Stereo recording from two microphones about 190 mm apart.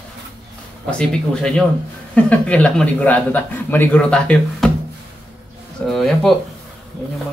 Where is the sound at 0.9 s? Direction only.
5° left (ahead or behind).